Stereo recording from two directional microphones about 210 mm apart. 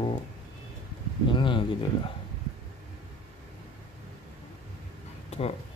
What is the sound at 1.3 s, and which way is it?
Speech, 20° left (ahead or behind).